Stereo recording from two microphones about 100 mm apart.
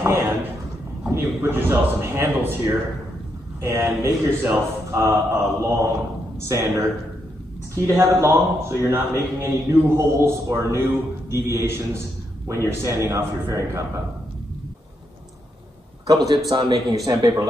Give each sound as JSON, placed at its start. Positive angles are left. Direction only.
{"t": 0.0, "sound": "a sound", "side_deg": -25}
{"t": 1.1, "sound": "a man's voice", "side_deg": -20}
{"t": 16.4, "sound": "speech", "side_deg": -45}